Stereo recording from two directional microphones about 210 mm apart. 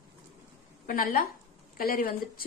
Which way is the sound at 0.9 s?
40° left (ahead or behind).